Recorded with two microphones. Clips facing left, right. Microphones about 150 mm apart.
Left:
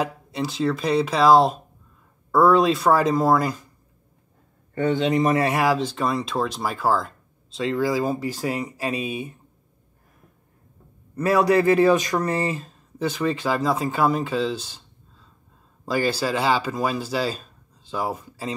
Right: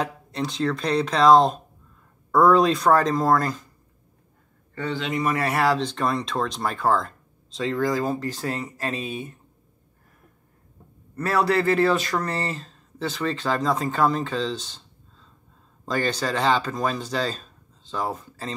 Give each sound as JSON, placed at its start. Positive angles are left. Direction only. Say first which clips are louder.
{"t": 0.0, "sound": "speech", "louder": "left 1 dB", "side_deg": 5}
{"t": 4.8, "sound": "a man's voice", "louder": "left 6 dB", "side_deg": 40}
{"t": 5.5, "sound": "speech", "louder": "left 1 dB", "side_deg": 10}
{"t": 11.1, "sound": "speech", "louder": "left 4 dB", "side_deg": 15}